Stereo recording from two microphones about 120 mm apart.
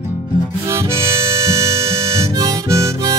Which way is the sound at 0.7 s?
25° right (ahead or behind).